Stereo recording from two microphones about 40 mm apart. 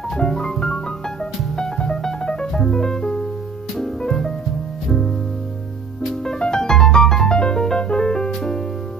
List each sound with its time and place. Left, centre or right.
0.2 s music: centre
6.2 s music: centre